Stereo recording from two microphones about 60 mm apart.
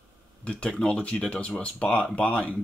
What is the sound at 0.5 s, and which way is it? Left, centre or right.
Speech, centre.